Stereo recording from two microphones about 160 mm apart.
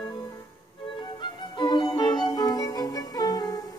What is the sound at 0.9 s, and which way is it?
Music, 30° left (ahead or behind).